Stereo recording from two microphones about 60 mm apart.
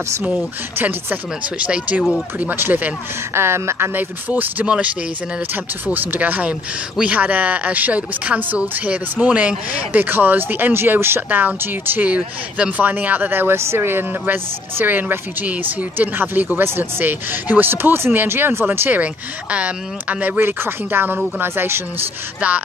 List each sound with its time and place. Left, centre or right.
1.6 s speech: right
3.3 s speech: right
3.9 s speech: right
5.9 s speech: right
10.0 s speech: right
12.1 s speech: right
20.3 s speech: right
22.4 s speech: right